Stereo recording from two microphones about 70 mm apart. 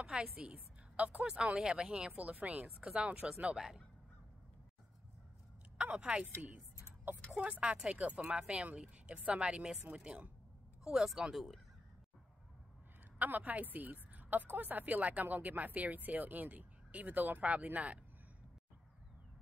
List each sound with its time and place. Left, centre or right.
0.0 s a woman's voice: centre
5.8 s a woman's voice: centre
7.2 s speech: centre
13.2 s a woman's voice: right